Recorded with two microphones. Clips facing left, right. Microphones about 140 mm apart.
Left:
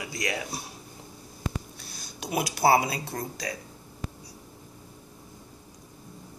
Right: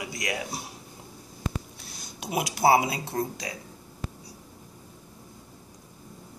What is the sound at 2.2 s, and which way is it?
Speech, 20° right (ahead or behind).